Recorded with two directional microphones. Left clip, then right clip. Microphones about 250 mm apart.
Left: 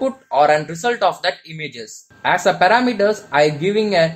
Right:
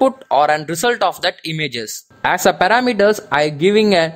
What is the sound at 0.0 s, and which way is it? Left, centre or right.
A woman's voice, right.